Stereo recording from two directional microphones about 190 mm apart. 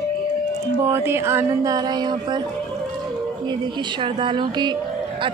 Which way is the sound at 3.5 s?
25° right (ahead or behind).